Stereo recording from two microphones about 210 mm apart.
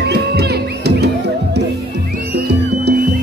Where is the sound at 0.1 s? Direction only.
50° right (ahead or behind).